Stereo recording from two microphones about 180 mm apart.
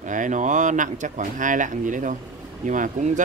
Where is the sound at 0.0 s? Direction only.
45° right (ahead or behind).